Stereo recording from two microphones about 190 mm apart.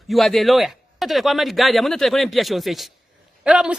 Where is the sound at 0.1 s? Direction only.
Centre (ahead or behind).